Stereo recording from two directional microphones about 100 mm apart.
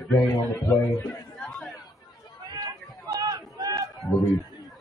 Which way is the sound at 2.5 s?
40° right (ahead or behind).